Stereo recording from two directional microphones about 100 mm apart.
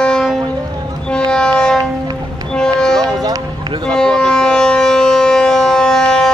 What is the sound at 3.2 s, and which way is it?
Music, 40° right (ahead or behind).